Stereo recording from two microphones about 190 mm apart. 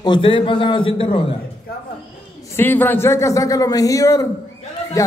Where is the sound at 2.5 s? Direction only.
10° left (ahead or behind).